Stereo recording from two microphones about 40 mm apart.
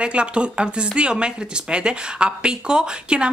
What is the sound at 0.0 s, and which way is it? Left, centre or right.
Speech, right.